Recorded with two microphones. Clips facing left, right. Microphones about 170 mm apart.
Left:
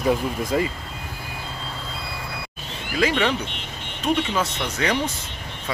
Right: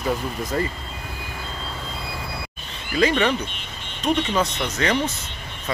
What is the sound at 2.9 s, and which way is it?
Speech, 5° left (ahead or behind).